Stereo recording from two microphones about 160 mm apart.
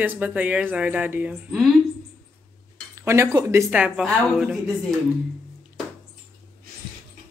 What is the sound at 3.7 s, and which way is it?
Speech, 5° right (ahead or behind).